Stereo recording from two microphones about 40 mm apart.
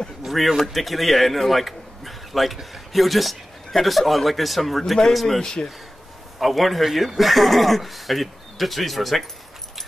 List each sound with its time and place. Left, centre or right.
0.2 s a sound: centre
0.6 s a man's voice: centre
5.4 s speech: centre
6.4 s speech: centre